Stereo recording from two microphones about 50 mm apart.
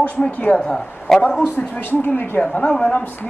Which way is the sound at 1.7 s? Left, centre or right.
Left.